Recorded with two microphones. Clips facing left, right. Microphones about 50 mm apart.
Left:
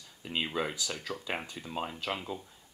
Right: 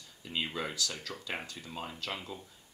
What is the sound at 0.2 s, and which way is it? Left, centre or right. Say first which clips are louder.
Speech: left 3 dB; left.